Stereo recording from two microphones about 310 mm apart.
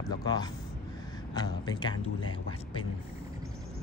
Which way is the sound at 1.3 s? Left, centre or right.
Centre.